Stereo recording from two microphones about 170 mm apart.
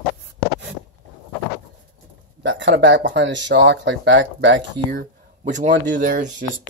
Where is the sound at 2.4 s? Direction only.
90° right.